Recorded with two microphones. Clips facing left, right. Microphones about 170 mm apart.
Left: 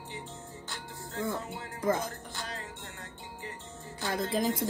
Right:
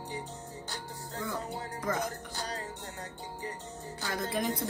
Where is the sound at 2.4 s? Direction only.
40° right (ahead or behind).